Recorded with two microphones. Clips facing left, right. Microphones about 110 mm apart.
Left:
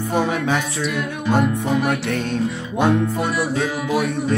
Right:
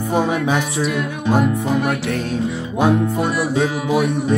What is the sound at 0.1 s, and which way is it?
Music, 5° right (ahead or behind).